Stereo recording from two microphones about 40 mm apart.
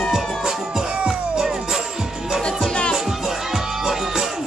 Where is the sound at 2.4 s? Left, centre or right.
Left.